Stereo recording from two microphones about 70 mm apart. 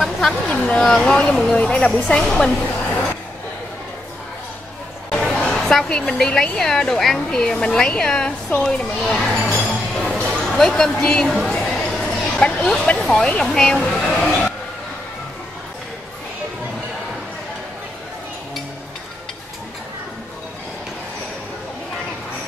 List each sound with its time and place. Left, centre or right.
0.0 s a woman's voice: centre
5.1 s music: centre
5.5 s a woman's voice: centre
10.1 s a sound: centre
12.8 s a woman's voice: centre